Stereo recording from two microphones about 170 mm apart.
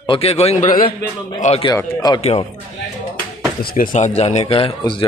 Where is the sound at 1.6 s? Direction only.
25° left (ahead or behind).